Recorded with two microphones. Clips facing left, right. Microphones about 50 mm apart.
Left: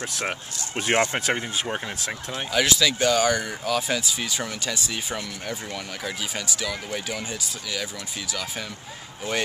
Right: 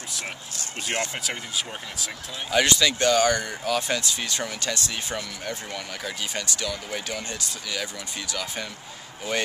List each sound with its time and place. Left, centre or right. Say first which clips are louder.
0.7 s speech: left 7 dB; left
2.5 s speech: right 1 dB; centre